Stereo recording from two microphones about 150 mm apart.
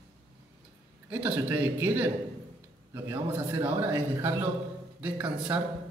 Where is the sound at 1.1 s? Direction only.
10° right (ahead or behind).